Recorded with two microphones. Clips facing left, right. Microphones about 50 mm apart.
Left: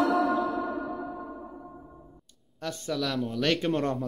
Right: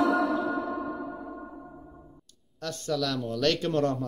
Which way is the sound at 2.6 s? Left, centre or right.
Centre.